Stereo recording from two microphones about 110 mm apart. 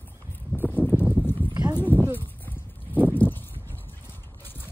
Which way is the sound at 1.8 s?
20° left (ahead or behind).